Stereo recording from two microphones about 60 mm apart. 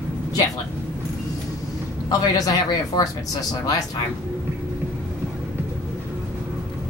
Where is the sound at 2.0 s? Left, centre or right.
Left.